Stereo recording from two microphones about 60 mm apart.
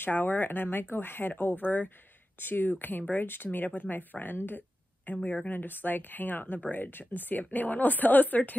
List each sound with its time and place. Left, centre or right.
0.0 s speech: left